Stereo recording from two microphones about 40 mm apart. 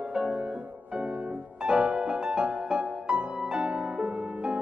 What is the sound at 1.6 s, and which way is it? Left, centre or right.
Music, right.